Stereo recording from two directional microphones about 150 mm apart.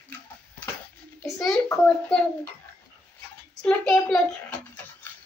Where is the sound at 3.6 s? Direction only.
5° left (ahead or behind).